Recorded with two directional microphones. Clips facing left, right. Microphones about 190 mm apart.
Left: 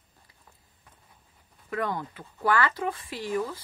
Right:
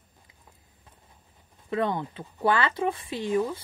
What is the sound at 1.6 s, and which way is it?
Speech, 25° right (ahead or behind).